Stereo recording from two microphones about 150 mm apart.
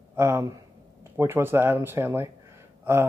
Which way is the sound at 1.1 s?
15° right (ahead or behind).